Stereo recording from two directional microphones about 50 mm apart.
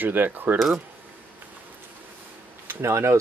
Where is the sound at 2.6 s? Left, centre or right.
Right.